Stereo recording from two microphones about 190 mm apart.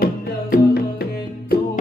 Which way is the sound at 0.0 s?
50° left (ahead or behind).